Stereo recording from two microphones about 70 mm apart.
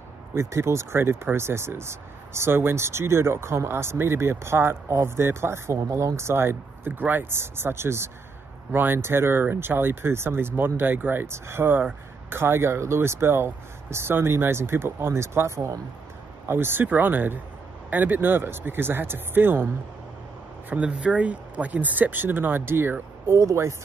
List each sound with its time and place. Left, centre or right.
0.3 s speech: right
16.4 s speech: right
20.7 s speech: centre
23.3 s speech: right